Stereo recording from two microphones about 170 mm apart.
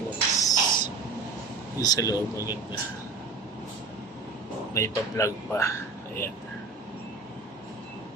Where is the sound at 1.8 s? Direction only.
20° left (ahead or behind).